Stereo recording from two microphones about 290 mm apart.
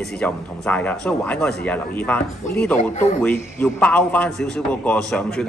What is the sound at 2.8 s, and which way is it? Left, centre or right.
Speech, left.